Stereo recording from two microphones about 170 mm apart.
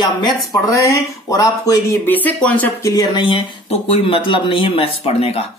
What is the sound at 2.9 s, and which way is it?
Speech, 25° left (ahead or behind).